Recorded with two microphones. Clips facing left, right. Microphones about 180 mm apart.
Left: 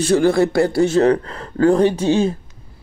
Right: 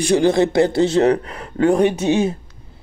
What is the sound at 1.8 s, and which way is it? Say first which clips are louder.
Speech: left 1 dB; 30° left (ahead or behind).